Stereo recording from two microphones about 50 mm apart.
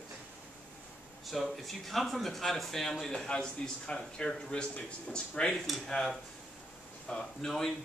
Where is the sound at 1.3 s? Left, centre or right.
Centre.